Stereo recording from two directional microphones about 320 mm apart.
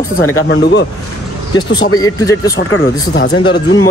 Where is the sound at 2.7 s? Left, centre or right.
Left.